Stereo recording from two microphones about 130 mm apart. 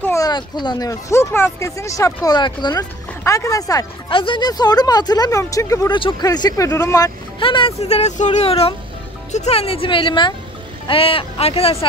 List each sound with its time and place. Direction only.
0.0 s a sound: 20° left (ahead or behind)
0.3 s speech: 35° left (ahead or behind)
4.1 s speech: 40° left (ahead or behind); by 7.1 s 25° left (ahead or behind)
7.3 s speech: 40° left (ahead or behind)